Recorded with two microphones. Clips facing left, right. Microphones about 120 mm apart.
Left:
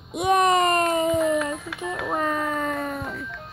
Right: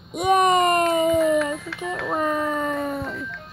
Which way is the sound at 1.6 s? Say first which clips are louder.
Right 1 dB; 15° left (ahead or behind).